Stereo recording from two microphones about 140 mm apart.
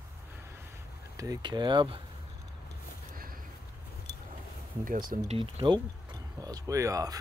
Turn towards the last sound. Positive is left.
turn(degrees=-25)  # may be behind; listen again after turning